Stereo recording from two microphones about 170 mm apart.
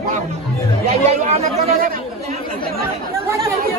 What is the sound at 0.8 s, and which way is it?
Speech, 40° right (ahead or behind).